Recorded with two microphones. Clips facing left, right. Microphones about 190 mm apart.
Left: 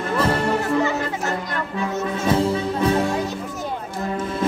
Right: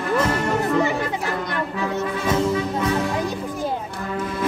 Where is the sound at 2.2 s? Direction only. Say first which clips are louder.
Left 1 dB; 30° left (ahead or behind).